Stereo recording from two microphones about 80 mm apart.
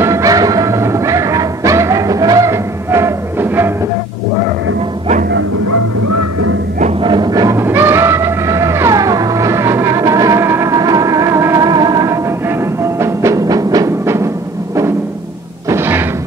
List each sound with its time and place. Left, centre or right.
0.0 s music: right
7.0 s music: right
7.2 s music: right
7.5 s music: right
10.4 s music: right
10.7 s music: right
13.0 s music: right
14.0 s music: right
15.7 s music: right